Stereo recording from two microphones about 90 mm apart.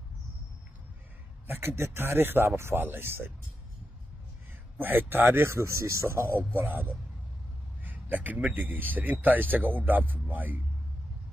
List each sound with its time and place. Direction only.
1.5 s speech: 25° right (ahead or behind)
4.7 s speech: 20° right (ahead or behind)